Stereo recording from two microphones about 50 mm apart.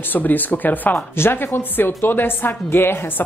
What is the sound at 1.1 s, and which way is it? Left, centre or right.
A woman's voice, left.